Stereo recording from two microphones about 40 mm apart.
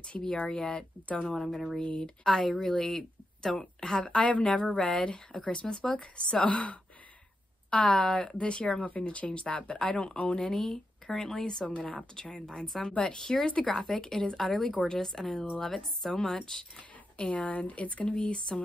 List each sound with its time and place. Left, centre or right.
0.5 s speech: centre
1.3 s speech: centre
1.8 s speech: left
2.2 s speech: centre
4.0 s speech: left
8.8 s speech: left; by 11.6 s centre
11.6 s speech: left
17.2 s speech: left